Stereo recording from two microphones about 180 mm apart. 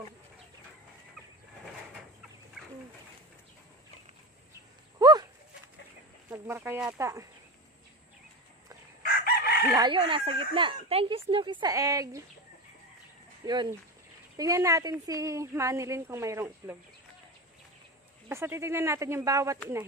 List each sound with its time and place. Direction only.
4.9 s a sound: 20° right (ahead or behind)
6.3 s a woman's voice: 15° right (ahead or behind)
9.0 s chicken: 55° left (ahead or behind)
9.7 s speech: 25° right (ahead or behind)
13.4 s a woman's voice: 20° right (ahead or behind)
18.3 s a woman's voice: 15° right (ahead or behind)